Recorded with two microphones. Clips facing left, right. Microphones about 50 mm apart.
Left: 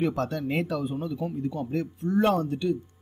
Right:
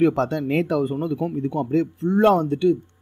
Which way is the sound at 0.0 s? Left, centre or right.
Right.